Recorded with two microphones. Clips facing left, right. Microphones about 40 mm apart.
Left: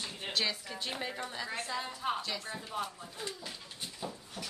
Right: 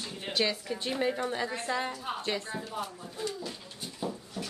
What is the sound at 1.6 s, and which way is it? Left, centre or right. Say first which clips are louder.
Speech: right 6 dB; right.